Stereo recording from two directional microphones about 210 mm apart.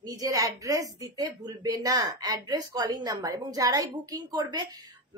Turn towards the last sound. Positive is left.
turn(degrees=-20)  # may be behind; listen again after turning